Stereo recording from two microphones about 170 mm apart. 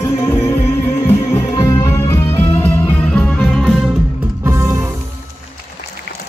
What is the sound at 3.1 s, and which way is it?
Music, centre (ahead or behind).